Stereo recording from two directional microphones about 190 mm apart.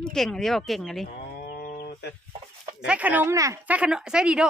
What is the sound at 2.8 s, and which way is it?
A woman's voice, 5° right (ahead or behind).